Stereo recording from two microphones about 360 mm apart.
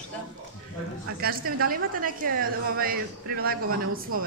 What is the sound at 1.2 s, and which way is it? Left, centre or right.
A woman's voice, right.